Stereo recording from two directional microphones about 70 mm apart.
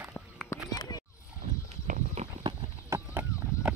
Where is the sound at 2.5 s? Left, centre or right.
Right.